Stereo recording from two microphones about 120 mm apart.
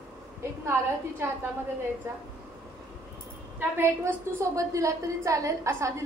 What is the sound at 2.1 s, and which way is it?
Speech, 20° right (ahead or behind).